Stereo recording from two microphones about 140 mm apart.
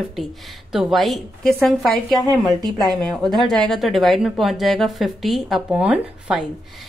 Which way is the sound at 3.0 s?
Centre (ahead or behind).